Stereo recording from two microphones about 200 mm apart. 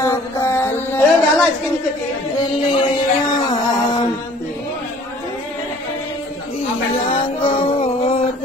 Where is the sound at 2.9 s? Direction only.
20° left (ahead or behind).